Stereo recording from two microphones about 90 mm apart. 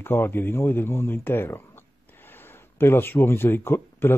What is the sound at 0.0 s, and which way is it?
A man's voice, 25° left (ahead or behind).